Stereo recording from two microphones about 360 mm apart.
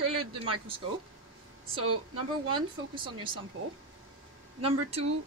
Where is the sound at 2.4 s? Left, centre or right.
Centre.